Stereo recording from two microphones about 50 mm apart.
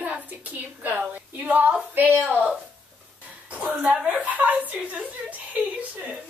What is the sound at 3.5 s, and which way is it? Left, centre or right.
A woman's voice, right.